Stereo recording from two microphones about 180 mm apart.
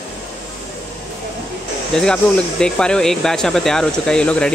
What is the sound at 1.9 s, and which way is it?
Speech, 5° left (ahead or behind).